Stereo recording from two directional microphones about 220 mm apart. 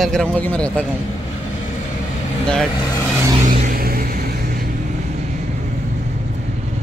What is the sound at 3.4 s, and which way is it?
Vehicle, 40° right (ahead or behind).